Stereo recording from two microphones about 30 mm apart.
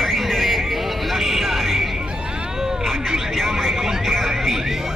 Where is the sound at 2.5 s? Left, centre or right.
Centre.